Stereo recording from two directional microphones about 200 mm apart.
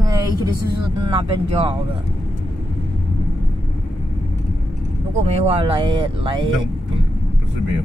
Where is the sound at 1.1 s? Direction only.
25° right (ahead or behind).